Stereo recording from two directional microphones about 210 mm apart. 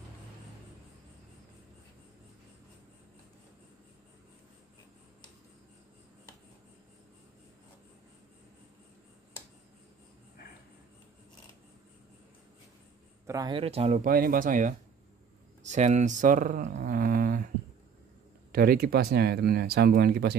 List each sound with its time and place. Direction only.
13.3 s speech: 20° right (ahead or behind); by 14.8 s 40° right (ahead or behind)
15.6 s a sound: 35° right (ahead or behind)
18.5 s speech: 45° right (ahead or behind)